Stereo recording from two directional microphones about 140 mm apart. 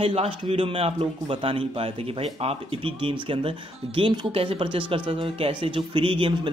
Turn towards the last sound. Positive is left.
turn(degrees=-40)  # may be behind; listen again after turning